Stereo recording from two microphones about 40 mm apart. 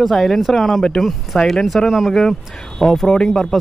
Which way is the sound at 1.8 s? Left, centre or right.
Centre.